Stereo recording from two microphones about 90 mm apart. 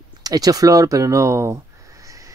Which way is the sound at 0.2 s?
45° right (ahead or behind).